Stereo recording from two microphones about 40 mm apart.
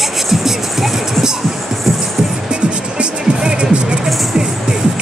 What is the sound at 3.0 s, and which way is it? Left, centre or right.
Music, right.